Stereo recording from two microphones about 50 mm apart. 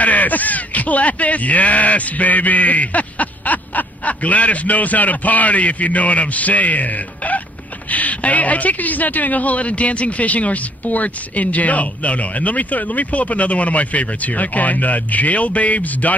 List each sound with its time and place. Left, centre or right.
0.0 s speech: left